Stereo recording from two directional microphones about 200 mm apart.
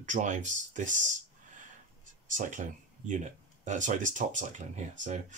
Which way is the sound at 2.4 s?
40° right (ahead or behind).